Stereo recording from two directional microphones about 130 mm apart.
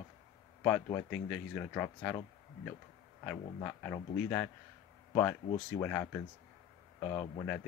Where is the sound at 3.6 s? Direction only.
15° left (ahead or behind).